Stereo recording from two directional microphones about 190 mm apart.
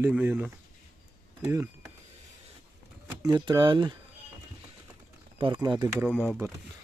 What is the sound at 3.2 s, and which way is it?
Speech, 20° right (ahead or behind).